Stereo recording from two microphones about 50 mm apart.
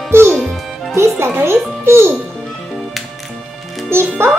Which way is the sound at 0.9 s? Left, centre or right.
Right.